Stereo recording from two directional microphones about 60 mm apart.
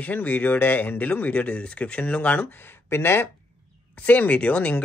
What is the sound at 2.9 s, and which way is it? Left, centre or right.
Speech, left.